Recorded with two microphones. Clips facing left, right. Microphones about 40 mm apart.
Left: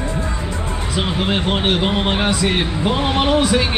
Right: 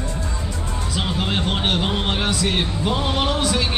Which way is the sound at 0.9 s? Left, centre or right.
Left.